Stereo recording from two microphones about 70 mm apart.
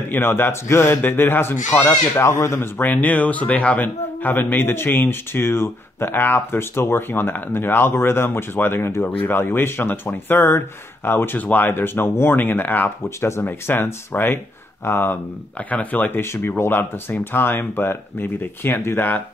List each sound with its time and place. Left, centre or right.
0.1 s a man's voice: left
2.8 s a man's voice: left
16.2 s a man's voice: left